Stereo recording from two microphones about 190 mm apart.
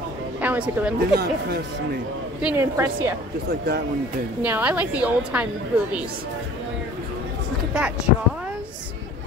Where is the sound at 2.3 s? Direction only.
10° right (ahead or behind).